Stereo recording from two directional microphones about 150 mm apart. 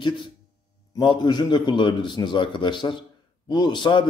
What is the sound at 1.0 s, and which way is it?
A man's voice, 30° left (ahead or behind).